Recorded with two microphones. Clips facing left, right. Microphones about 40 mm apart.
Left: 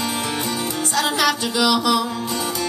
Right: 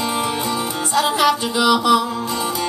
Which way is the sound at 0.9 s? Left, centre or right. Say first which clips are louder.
Right 4 dB; centre.